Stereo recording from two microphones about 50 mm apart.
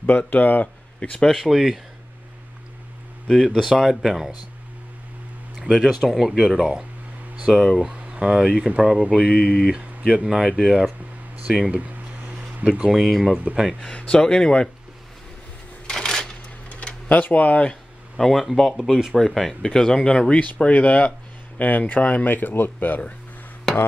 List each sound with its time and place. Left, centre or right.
0.0 s speech: left
1.3 s speech: centre
3.3 s speech: centre
5.9 s speech: centre
7.8 s speech: centre
9.1 s speech: centre
10.1 s speech: centre
11.7 s a sound: right
12.8 s speech: centre
13.8 s speech: left
15.9 s a sound: centre
17.1 s speech: left
18.1 s speech: centre; by 23.1 s left